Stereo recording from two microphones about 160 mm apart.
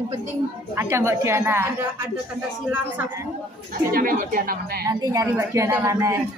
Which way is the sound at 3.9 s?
60° right (ahead or behind).